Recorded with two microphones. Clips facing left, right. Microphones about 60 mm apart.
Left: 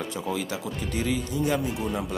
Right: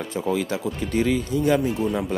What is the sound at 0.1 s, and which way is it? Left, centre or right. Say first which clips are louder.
Speech: right 5 dB; right.